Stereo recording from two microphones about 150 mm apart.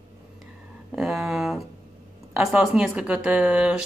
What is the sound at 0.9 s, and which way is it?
Speech, centre (ahead or behind).